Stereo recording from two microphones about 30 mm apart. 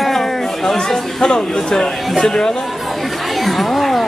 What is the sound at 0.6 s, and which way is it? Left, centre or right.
Speech, centre.